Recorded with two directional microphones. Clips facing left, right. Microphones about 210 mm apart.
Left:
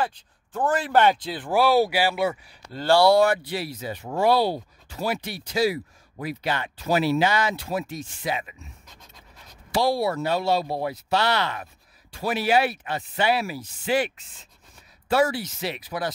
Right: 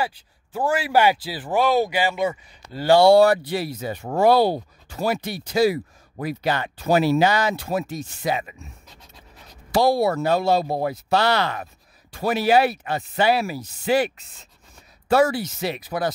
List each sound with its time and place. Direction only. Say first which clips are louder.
0.0 s speech: right 1 dB; 10° right (ahead or behind)
1.5 s speech: even; 10° left (ahead or behind)
2.7 s speech: right 4 dB; 10° right (ahead or behind)
3.0 s speech: right 4 dB; 30° right (ahead or behind)
9.8 s speech: right 4 dB; 50° right (ahead or behind)